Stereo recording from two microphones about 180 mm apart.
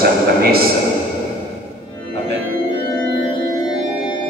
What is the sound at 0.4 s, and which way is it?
Speech, 60° right (ahead or behind).